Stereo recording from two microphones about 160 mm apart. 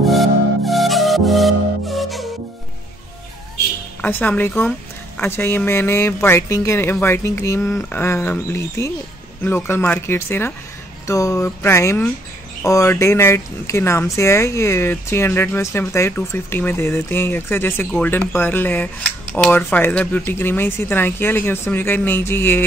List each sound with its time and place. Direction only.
0.0 s music: centre (ahead or behind)
4.0 s speech: 10° left (ahead or behind)